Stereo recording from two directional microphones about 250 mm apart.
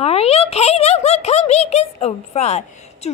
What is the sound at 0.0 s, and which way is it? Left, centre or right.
Speech, left.